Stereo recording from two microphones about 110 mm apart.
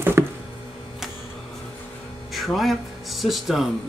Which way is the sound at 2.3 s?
Centre (ahead or behind).